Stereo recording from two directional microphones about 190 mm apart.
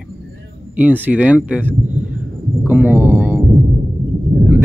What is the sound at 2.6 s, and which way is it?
Music, 10° right (ahead or behind).